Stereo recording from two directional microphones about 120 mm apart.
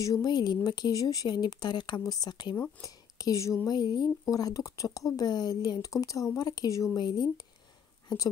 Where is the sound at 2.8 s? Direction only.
25° left (ahead or behind).